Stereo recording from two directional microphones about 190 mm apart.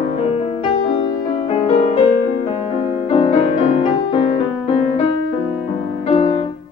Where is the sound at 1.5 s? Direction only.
30° left (ahead or behind).